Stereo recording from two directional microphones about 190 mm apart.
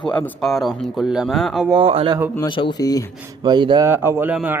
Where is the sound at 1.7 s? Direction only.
30° right (ahead or behind).